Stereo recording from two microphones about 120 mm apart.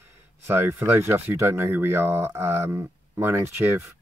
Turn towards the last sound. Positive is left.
turn(degrees=-20)  # may be behind; listen again after turning